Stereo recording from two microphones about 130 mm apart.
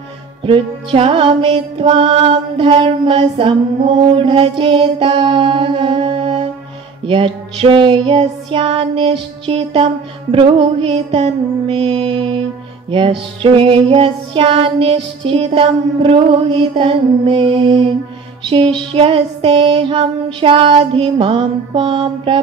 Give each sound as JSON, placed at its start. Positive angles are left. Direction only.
{"t": 0.4, "sound": "music", "side_deg": -45}